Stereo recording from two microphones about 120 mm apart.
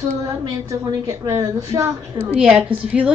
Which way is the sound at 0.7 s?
25° right (ahead or behind).